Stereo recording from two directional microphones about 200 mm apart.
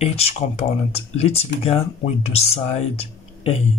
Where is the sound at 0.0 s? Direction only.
30° left (ahead or behind).